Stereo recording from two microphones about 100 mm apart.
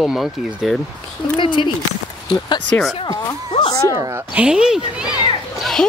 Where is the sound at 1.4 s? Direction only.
55° left (ahead or behind).